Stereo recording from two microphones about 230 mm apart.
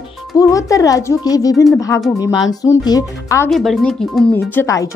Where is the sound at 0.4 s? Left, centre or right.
Centre.